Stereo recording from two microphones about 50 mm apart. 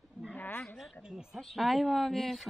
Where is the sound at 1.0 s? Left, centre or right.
Centre.